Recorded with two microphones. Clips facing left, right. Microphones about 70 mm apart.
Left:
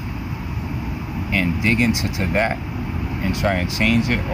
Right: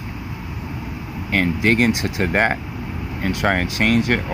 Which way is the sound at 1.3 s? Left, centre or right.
Right.